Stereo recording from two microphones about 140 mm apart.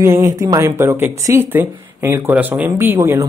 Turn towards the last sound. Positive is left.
turn(degrees=-20)  # may be behind; listen again after turning